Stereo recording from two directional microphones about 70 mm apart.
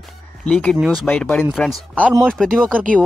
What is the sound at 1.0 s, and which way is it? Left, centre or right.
Speech, centre.